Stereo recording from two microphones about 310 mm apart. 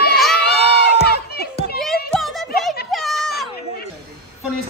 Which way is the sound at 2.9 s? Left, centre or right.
Centre.